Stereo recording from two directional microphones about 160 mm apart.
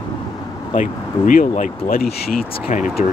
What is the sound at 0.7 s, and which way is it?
Speech, 55° left (ahead or behind).